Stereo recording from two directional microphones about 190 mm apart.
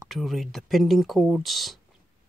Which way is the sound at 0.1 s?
Centre (ahead or behind).